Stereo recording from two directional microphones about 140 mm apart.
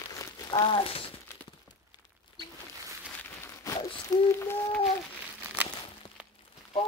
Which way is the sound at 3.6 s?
25° left (ahead or behind).